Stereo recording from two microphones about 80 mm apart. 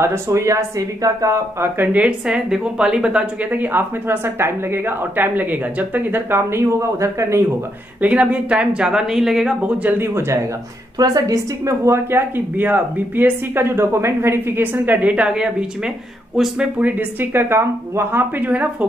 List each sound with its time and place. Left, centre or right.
0.0 s speech: right
1.8 s speech: centre; by 7.4 s right
8.0 s speech: centre
9.8 s speech: right
11.0 s speech: right; by 15.9 s centre
16.7 s speech: right
18.5 s speech: centre